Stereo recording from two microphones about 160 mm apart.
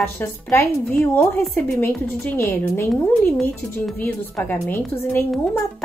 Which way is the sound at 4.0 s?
15° left (ahead or behind).